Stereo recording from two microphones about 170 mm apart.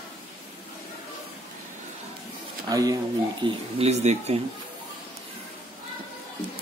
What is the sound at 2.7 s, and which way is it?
Speech, 20° right (ahead or behind).